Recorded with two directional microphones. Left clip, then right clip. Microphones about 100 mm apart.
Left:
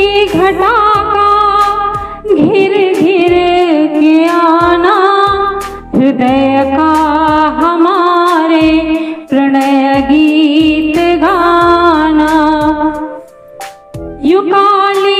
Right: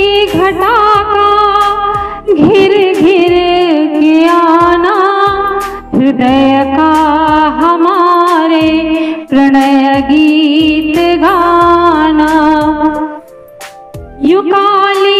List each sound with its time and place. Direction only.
0.0 s music: 35° right (ahead or behind)
14.2 s music: 35° right (ahead or behind)